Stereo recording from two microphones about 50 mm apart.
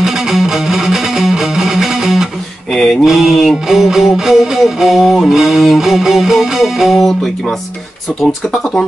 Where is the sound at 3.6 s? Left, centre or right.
Centre.